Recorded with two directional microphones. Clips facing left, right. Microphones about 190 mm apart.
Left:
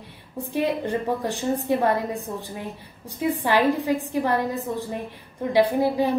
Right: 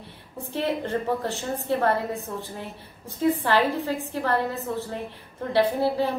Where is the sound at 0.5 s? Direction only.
15° left (ahead or behind).